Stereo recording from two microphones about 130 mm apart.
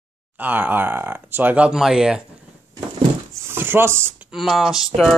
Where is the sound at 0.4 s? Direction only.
15° right (ahead or behind).